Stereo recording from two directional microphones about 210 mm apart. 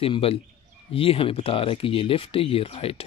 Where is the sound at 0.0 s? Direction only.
25° left (ahead or behind).